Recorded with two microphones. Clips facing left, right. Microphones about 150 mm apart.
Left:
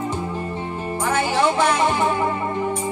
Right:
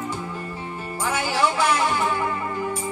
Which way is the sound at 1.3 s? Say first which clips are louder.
Left 2 dB; 25° left (ahead or behind).